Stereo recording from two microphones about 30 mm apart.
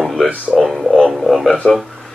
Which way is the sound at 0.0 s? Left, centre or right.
Centre.